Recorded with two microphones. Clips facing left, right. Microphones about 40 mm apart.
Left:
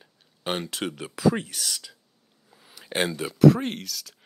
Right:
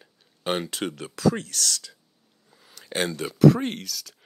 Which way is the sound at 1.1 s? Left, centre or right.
Centre.